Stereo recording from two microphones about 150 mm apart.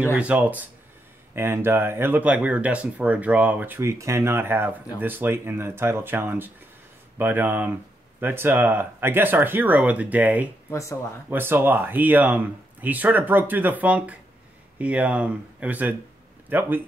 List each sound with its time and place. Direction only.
0.0 s speech: 10° right (ahead or behind)
10.7 s speech: 20° left (ahead or behind)
11.2 s speech: 15° right (ahead or behind)